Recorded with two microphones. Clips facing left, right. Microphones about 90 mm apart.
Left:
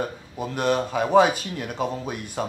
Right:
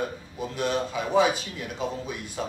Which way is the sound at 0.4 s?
55° left (ahead or behind).